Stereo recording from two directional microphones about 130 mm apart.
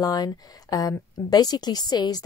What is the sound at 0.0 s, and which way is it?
A woman's voice, 30° left (ahead or behind).